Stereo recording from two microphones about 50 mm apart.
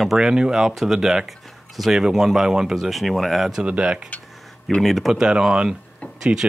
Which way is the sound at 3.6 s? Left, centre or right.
Right.